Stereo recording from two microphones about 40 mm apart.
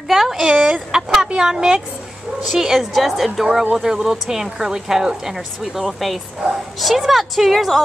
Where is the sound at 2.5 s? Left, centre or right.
Centre.